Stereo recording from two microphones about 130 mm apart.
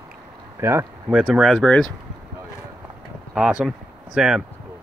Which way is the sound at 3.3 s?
5° right (ahead or behind).